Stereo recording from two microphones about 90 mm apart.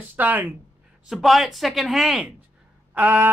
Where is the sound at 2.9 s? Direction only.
20° right (ahead or behind).